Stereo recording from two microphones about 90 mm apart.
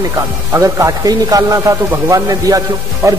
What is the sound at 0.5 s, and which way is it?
A man's voice, 35° right (ahead or behind).